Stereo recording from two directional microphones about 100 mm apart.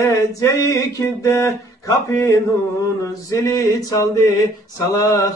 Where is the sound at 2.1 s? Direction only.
30° left (ahead or behind).